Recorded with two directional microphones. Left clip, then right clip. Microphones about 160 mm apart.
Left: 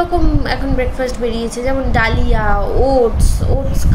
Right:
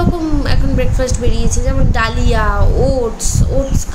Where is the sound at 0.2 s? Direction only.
20° right (ahead or behind).